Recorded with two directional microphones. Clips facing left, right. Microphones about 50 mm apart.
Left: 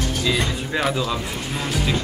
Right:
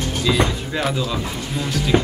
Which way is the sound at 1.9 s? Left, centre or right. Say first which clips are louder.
Right 8 dB; right.